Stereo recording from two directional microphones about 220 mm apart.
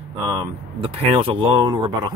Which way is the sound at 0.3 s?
20° right (ahead or behind).